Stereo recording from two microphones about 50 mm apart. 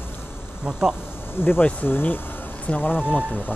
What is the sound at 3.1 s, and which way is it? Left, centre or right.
Speech, left.